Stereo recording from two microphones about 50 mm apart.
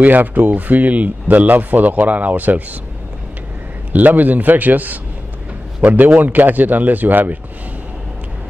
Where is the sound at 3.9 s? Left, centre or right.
Right.